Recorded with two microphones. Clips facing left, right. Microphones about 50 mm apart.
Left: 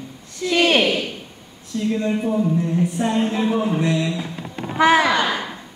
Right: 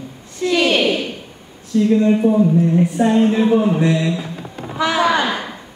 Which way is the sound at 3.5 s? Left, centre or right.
Right.